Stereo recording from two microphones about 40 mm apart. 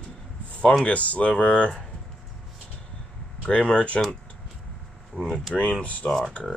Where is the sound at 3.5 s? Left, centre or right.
Left.